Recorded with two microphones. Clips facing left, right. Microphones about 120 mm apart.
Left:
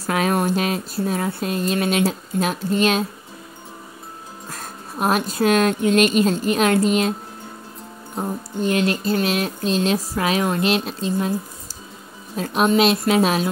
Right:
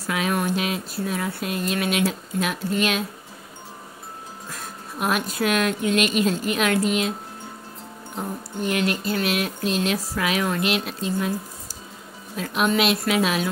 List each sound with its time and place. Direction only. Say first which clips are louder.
0.1 s speech: left 4 dB; 40° left (ahead or behind)
4.5 s speech: left 3 dB; 40° left (ahead or behind)
8.5 s speech: left 4 dB; 30° left (ahead or behind)
12.4 s speech: left 4 dB; 35° left (ahead or behind)